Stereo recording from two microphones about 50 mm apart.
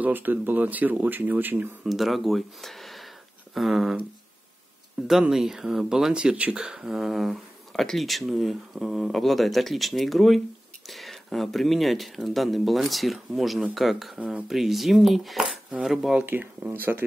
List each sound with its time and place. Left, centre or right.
0.0 s speech: right
1.9 s speech: centre
5.0 s speech: centre
5.3 s speech: centre
6.1 s speech: right
6.8 s speech: centre
16.3 s speech: right